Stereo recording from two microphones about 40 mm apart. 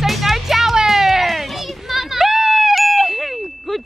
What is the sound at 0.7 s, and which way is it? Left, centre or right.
Children playing, centre.